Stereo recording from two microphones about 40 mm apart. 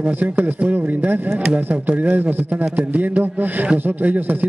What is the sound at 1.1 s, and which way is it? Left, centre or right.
Speech, right.